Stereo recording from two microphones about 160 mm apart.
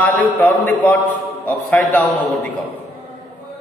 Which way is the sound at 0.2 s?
10° left (ahead or behind).